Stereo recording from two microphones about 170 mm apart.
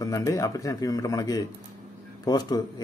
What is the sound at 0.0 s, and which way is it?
Speech, 20° left (ahead or behind).